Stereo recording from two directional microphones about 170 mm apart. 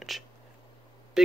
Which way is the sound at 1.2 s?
5° right (ahead or behind).